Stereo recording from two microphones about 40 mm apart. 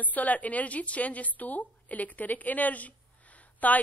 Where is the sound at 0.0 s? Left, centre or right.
Left.